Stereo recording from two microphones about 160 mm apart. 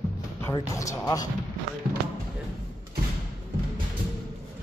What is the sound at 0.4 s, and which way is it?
Speech, 20° left (ahead or behind).